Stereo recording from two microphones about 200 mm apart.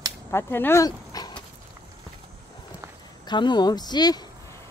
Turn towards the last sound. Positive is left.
turn(degrees=20)  # may be behind; listen again after turning